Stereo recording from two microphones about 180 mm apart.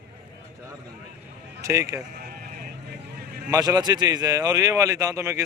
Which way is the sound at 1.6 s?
15° right (ahead or behind).